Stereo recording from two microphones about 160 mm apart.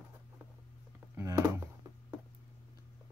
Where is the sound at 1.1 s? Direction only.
15° right (ahead or behind).